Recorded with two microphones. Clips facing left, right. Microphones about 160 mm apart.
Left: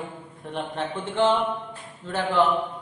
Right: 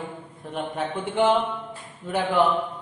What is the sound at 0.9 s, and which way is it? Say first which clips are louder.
A man's voice: right 1 dB; 10° right (ahead or behind).